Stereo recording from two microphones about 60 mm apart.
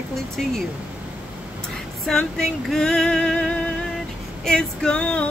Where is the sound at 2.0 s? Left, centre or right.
Centre.